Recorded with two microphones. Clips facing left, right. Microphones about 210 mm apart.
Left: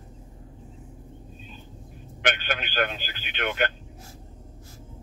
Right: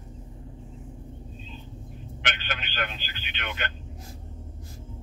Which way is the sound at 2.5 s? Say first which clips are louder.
Left 6 dB; 55° left (ahead or behind).